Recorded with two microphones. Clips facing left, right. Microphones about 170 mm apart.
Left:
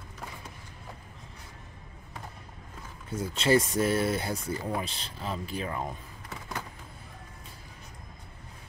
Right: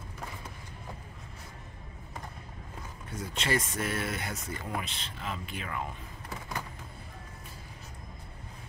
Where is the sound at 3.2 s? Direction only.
30° left (ahead or behind).